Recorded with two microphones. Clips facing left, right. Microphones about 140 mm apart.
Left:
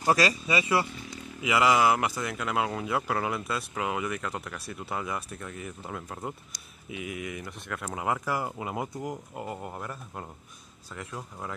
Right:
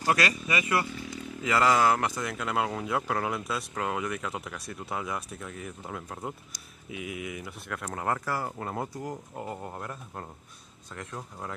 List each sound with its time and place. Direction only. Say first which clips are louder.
0.1 s speech: left 3 dB; 30° left (ahead or behind)
1.4 s speech: left 1 dB; 10° left (ahead or behind)
9.3 s speech: even; 5° left (ahead or behind)